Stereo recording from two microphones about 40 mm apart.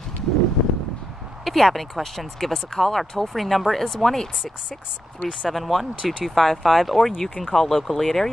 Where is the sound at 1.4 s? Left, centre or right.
Centre.